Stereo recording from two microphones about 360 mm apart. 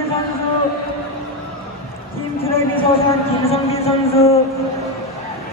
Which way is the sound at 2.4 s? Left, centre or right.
Centre.